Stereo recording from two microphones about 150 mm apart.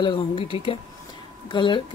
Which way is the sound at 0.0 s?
35° left (ahead or behind).